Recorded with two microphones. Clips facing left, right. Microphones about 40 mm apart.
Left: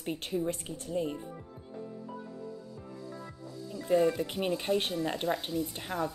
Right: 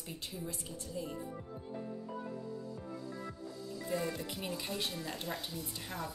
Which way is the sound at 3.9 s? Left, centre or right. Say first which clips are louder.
Left 11 dB; left.